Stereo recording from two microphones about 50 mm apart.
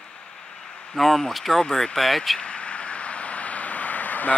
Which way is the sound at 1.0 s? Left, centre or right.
Centre.